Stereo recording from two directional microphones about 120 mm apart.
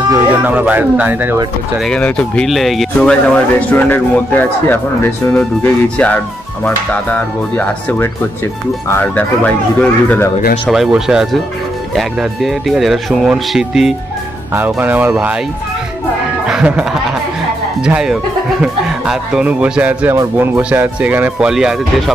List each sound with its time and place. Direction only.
0.3 s speech: 15° right (ahead or behind)
1.8 s speech: 10° left (ahead or behind)
10.7 s speech: 5° right (ahead or behind)
14.5 s speech: 15° right (ahead or behind)
16.4 s music: 10° right (ahead or behind)
17.8 s speech: 5° right (ahead or behind)